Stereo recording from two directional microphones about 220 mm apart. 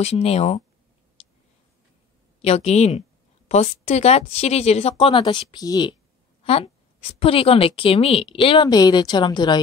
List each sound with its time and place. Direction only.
0.0 s a woman's voice: 30° left (ahead or behind)
2.4 s a woman's voice: 30° left (ahead or behind)